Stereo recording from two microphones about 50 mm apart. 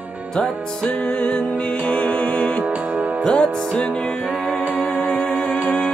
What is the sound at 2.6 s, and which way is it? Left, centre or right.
Music, right.